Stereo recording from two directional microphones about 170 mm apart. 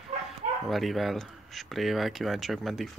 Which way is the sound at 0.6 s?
Centre (ahead or behind).